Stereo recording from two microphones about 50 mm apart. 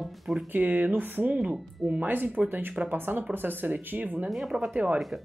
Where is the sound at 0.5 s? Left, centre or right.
Right.